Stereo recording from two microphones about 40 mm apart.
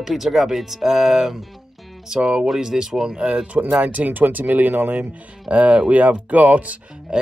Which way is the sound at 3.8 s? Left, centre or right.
Right.